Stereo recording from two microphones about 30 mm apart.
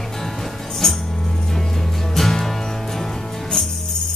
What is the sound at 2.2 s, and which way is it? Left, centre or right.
Music, centre.